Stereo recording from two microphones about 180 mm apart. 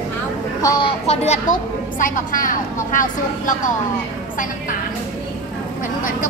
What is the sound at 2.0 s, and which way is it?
A woman's voice, 50° left (ahead or behind).